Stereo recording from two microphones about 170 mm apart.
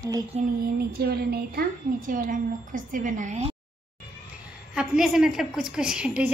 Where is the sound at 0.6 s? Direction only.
65° right (ahead or behind); by 3.6 s 40° right (ahead or behind).